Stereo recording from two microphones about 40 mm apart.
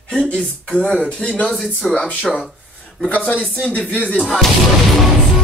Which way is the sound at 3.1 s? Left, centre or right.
Left.